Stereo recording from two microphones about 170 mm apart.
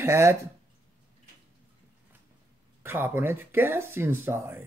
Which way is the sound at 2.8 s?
15° right (ahead or behind).